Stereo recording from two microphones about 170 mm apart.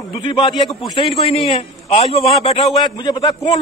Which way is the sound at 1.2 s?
35° left (ahead or behind).